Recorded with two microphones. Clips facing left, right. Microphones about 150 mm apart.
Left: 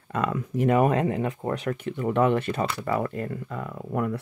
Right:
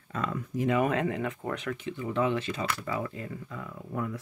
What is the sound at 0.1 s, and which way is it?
Speech, 65° left (ahead or behind).